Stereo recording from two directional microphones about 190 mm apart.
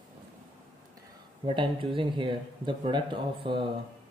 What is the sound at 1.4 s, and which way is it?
A man's voice, 25° right (ahead or behind).